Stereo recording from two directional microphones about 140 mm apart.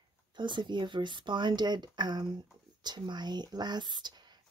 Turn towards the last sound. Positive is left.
turn(degrees=-30)  # may be behind; listen again after turning